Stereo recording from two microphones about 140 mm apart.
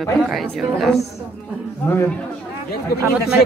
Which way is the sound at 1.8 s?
15° left (ahead or behind).